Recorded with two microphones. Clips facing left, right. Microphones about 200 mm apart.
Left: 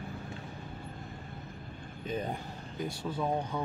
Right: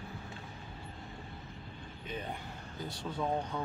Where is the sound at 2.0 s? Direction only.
40° left (ahead or behind).